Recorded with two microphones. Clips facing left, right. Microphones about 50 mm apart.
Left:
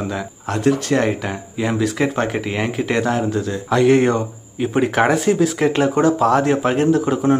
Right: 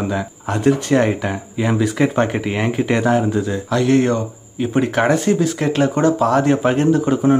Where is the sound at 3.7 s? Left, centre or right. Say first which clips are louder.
Left 2 dB; centre.